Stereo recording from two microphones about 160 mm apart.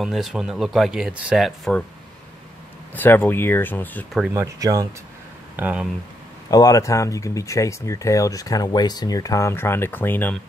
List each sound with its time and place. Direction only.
0.0 s speech: centre (ahead or behind)
2.9 s speech: 10° left (ahead or behind)
4.3 s speech: 20° right (ahead or behind)
5.6 s speech: 10° right (ahead or behind)
6.5 s speech: 20° left (ahead or behind)